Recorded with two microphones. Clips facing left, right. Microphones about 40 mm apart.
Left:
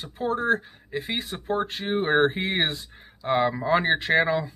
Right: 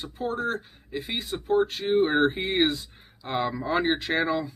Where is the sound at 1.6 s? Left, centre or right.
Left.